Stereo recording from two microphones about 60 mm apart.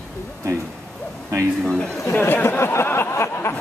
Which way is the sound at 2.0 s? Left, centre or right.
Left.